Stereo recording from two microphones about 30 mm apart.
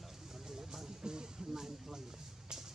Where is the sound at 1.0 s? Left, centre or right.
Right.